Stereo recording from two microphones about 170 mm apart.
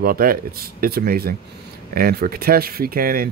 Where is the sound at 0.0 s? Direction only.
60° right (ahead or behind).